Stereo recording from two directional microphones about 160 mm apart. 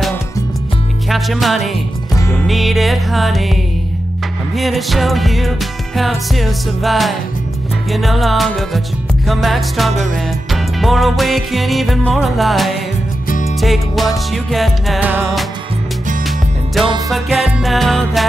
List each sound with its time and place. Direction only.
1.0 s music: centre (ahead or behind)
2.1 s music: 15° left (ahead or behind)
2.4 s music: centre (ahead or behind)
4.6 s music: centre (ahead or behind)
16.3 s music: centre (ahead or behind)